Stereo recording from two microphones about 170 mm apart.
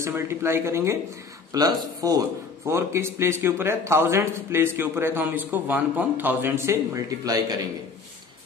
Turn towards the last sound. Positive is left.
turn(degrees=-20)  # may be behind; listen again after turning